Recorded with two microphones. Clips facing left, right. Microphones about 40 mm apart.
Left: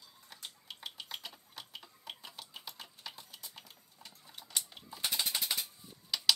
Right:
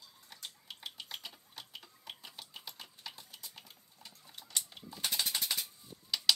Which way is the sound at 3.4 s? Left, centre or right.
Centre.